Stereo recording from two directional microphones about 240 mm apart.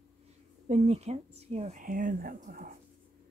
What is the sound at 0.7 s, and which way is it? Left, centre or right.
Speech, right.